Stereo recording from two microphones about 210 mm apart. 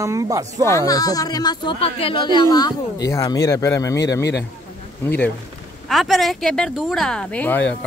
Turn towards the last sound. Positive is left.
turn(degrees=10)  # may be behind; listen again after turning